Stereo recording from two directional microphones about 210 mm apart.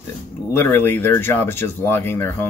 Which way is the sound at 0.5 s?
10° left (ahead or behind).